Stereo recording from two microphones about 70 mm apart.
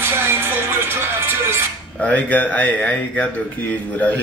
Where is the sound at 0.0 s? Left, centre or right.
Right.